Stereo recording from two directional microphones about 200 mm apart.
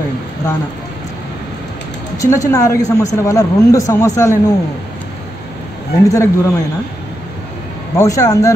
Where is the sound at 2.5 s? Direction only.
15° left (ahead or behind).